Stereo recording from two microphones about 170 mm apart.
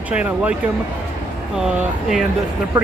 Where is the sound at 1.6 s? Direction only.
5° right (ahead or behind).